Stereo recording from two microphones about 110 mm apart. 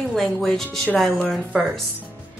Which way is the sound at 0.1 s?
5° left (ahead or behind).